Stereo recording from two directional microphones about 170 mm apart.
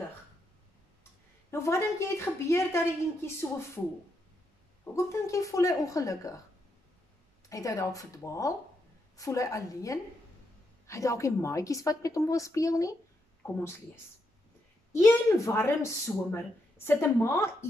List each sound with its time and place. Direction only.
1.5 s speech: 15° left (ahead or behind)
4.9 s a woman's voice: 15° left (ahead or behind)
7.4 s a woman's voice: 20° left (ahead or behind)
14.9 s speech: 15° left (ahead or behind)